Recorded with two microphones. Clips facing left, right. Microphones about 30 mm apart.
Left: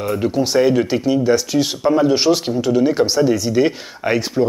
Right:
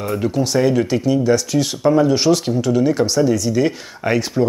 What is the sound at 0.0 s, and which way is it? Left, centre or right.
Speech, centre.